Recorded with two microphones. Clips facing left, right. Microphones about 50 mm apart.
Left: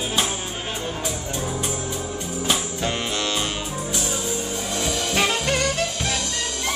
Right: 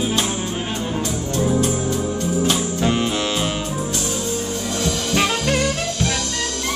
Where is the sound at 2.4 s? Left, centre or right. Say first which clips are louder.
Right 1 dB; centre.